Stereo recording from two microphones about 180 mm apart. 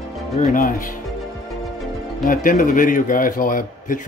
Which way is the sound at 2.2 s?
50° left (ahead or behind).